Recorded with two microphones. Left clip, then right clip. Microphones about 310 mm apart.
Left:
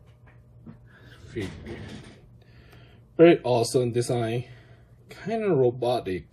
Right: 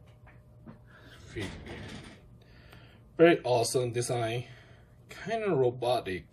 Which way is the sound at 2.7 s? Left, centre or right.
Centre.